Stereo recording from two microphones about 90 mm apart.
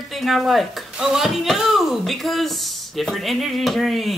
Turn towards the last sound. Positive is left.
turn(degrees=0)  # may be behind; listen again after turning